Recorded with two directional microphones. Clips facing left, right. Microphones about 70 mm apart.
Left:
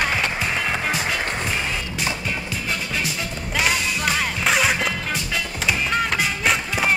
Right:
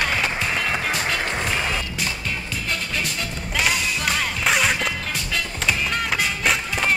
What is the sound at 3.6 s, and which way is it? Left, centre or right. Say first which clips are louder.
Music: left 1 dB; centre.